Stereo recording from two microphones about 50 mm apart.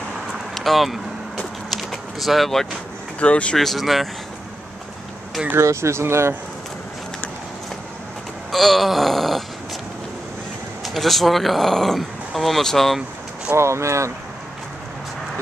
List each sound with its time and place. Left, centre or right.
0.6 s vehicle: centre
1.7 s a sound: centre
3.2 s speech: left
3.5 s speech: centre
5.6 s speech: right
8.5 s groan: centre
10.8 s speech: centre
13.6 s speech: right